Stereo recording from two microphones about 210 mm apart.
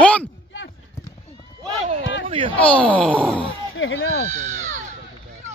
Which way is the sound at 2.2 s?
25° right (ahead or behind).